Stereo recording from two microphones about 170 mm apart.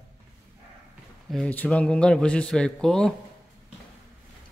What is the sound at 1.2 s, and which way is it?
A man's voice, 5° left (ahead or behind).